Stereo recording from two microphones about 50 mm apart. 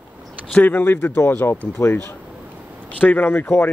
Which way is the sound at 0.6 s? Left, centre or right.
Left.